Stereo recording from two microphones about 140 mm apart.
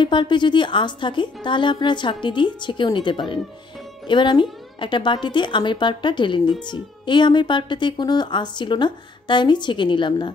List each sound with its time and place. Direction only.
0.0 s speech: 35° left (ahead or behind)